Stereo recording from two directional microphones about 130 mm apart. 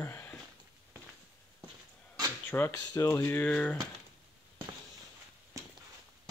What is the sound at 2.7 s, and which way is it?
Speech, 25° left (ahead or behind).